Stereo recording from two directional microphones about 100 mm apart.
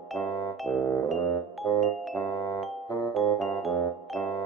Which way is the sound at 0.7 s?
35° left (ahead or behind).